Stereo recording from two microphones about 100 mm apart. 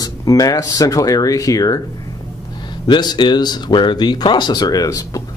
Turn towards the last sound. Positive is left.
turn(degrees=35)  # may be behind; listen again after turning